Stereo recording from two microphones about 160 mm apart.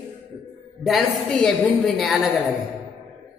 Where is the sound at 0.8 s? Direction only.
Centre (ahead or behind).